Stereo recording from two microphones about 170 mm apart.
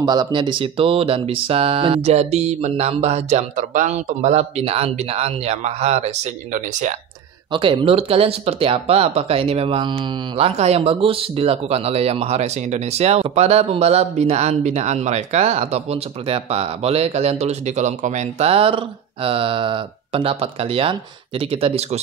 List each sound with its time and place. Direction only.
0.0 s speech: 25° right (ahead or behind); by 7.0 s 45° right (ahead or behind)
7.5 s speech: 30° right (ahead or behind)